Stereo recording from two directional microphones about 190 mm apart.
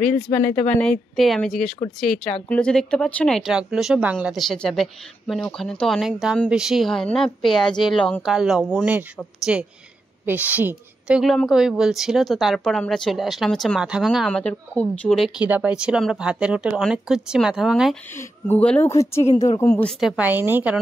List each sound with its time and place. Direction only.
0.0 s a woman's voice: 5° left (ahead or behind)
18.1 s speech: 10° left (ahead or behind)
19.2 s a woman's voice: 35° left (ahead or behind)
19.7 s a woman's voice: 5° left (ahead or behind)